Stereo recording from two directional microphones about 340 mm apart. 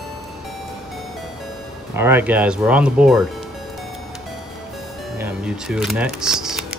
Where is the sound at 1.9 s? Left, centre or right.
Centre.